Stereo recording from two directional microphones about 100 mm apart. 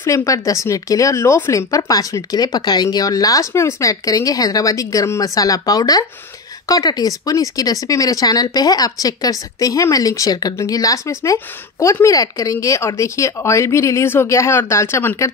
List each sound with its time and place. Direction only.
0.0 s a woman's voice: 30° left (ahead or behind)